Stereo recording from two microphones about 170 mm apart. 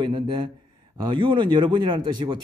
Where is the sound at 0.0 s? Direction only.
25° right (ahead or behind).